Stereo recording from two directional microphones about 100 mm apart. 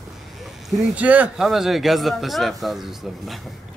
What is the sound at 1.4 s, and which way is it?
A man's voice, 5° right (ahead or behind).